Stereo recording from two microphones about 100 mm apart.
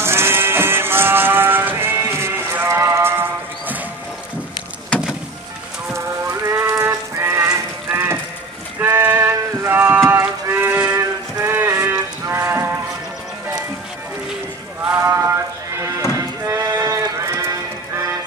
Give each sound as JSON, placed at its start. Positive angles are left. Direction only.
{"t": 0.0, "sound": "sheep", "side_deg": -25}
{"t": 4.9, "sound": "vehicle", "side_deg": 10}
{"t": 5.9, "sound": "music", "side_deg": -25}
{"t": 8.7, "sound": "clip-clop", "side_deg": -20}
{"t": 10.0, "sound": "music", "side_deg": -25}
{"t": 10.9, "sound": "a sound", "side_deg": -30}
{"t": 15.0, "sound": "a sound", "side_deg": -30}
{"t": 16.2, "sound": "music", "side_deg": -35}